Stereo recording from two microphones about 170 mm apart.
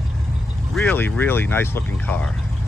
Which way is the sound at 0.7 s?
10° left (ahead or behind).